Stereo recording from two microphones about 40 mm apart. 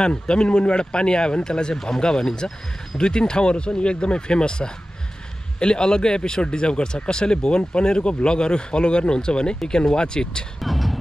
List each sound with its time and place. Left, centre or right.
0.0 s speech: left
10.6 s beatboxing: centre